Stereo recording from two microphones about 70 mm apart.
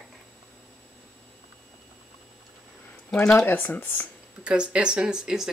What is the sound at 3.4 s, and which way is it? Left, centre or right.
Speech, left.